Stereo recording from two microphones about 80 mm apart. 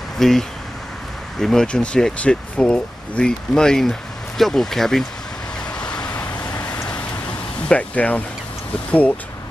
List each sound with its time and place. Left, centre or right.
0.2 s speech: centre
5.8 s vehicle: centre
7.6 s speech: centre